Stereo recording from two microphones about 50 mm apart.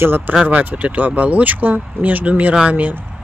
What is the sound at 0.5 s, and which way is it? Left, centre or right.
Speech, right.